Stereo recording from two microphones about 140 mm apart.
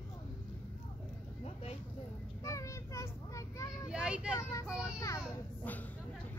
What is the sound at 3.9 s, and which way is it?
Vehicle, 5° right (ahead or behind).